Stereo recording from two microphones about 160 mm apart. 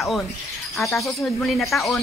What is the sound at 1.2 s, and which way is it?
Speech, centre (ahead or behind).